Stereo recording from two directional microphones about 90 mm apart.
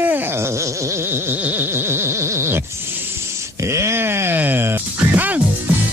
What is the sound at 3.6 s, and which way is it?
Speech, 30° right (ahead or behind).